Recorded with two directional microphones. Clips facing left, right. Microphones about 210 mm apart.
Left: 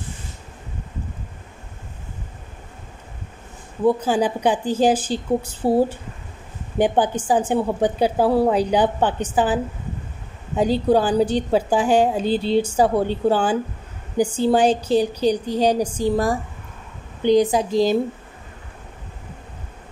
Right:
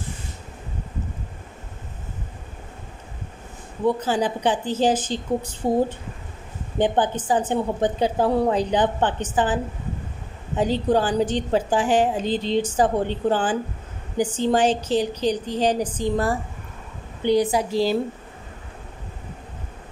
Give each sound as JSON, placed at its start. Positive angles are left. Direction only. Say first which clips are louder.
{"t": 4.0, "sound": "a woman's voice", "louder": "left 3 dB", "side_deg": 10}
{"t": 10.6, "sound": "a woman's voice", "louder": "left 3 dB", "side_deg": 10}